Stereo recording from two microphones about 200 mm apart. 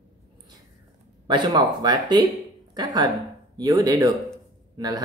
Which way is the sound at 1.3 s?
25° right (ahead or behind).